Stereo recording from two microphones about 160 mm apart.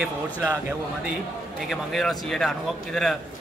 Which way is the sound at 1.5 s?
Centre (ahead or behind).